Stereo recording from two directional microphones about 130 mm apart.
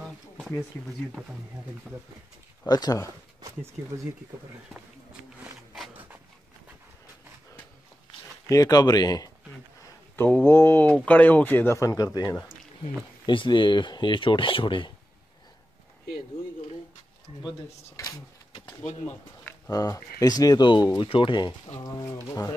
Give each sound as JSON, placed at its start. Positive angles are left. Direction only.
{"t": 1.2, "sound": "speech", "side_deg": -5}
{"t": 2.7, "sound": "speech", "side_deg": 30}
{"t": 3.8, "sound": "speech", "side_deg": -15}
{"t": 8.5, "sound": "speech", "side_deg": 25}
{"t": 10.1, "sound": "speech", "side_deg": 15}
{"t": 17.9, "sound": "speech", "side_deg": 25}
{"t": 19.7, "sound": "speech", "side_deg": 30}